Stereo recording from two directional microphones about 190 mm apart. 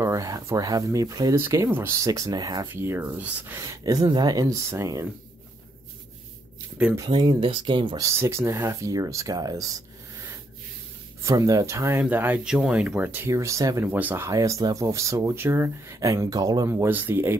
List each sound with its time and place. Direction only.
0.0 s speech: 15° right (ahead or behind)
2.7 s speech: 10° right (ahead or behind)
7.0 s speech: 20° right (ahead or behind)
11.2 s speech: 15° right (ahead or behind)